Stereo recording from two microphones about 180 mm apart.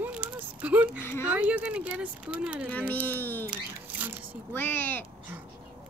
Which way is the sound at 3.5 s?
10° right (ahead or behind).